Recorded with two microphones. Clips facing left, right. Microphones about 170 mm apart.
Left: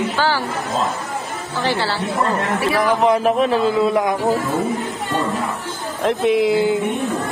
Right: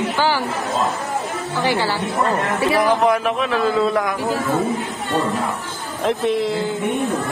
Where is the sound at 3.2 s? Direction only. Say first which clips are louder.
Left 5 dB; 35° left (ahead or behind).